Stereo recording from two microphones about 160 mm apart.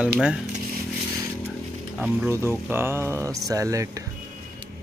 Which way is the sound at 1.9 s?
5° right (ahead or behind).